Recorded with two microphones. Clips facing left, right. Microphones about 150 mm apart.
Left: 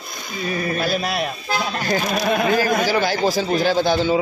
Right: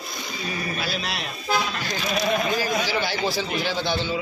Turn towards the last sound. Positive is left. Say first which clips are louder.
# left 8 dB
turn(degrees=40)  # may be behind; listen again after turning